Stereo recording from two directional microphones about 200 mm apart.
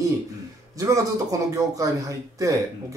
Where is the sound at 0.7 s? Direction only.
15° right (ahead or behind).